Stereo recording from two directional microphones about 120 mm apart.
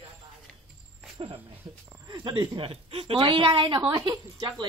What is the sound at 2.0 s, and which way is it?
A woman's voice, 40° right (ahead or behind).